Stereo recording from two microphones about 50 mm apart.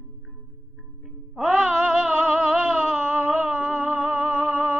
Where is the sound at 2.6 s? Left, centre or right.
Right.